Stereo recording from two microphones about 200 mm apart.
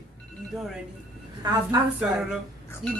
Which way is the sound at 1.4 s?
20° right (ahead or behind).